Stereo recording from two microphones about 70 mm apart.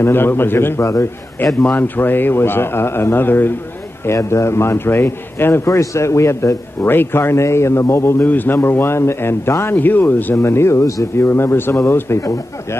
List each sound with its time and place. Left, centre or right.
0.0 s a man's voice: left
1.5 s speech: centre
1.8 s a man's voice: left
5.7 s a man's voice: left
8.3 s a man's voice: left
9.8 s speech: left
10.3 s a man's voice: left